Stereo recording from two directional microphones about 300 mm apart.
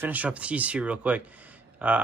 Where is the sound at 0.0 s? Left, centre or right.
Centre.